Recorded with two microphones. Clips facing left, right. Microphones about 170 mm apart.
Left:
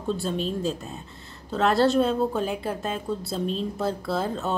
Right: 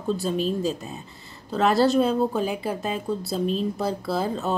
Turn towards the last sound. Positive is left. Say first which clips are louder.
# right 1 dB
turn(degrees=0)  # may be behind; listen again after turning